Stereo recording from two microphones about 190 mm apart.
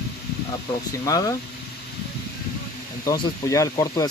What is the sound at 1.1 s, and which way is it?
Speech, 15° left (ahead or behind).